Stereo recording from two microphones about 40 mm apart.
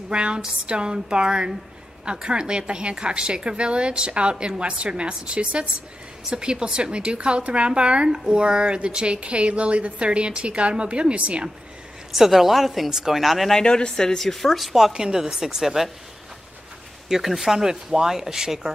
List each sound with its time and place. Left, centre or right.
0.1 s speech: right
12.1 s a woman's voice: centre
13.5 s speech: centre
14.9 s speech: centre
17.1 s speech: centre